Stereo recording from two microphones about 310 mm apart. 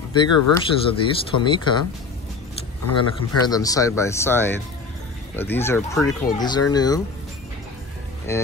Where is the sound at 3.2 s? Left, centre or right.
Centre.